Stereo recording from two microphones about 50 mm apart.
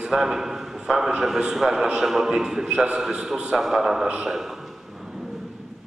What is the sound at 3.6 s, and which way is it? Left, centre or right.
Speech, centre.